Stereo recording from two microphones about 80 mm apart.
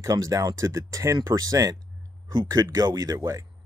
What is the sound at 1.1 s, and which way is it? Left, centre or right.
Speech, right.